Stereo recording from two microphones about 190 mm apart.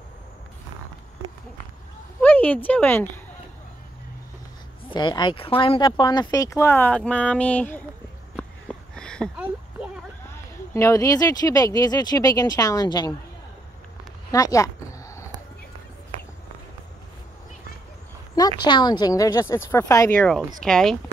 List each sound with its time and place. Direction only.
2.2 s speech: 10° left (ahead or behind)
4.9 s speech: 25° left (ahead or behind)
8.4 s a sound: 5° left (ahead or behind)
10.3 s speech: 15° left (ahead or behind)
14.3 s a sound: 15° left (ahead or behind)
18.6 s speech: 25° left (ahead or behind); by 20.9 s 5° left (ahead or behind)